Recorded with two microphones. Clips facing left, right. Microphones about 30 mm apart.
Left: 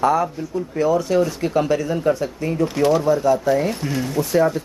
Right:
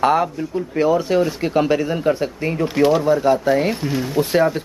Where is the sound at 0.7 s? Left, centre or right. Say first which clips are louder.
Right 1 dB; right.